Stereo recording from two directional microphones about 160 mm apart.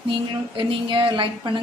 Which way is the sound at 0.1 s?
30° right (ahead or behind).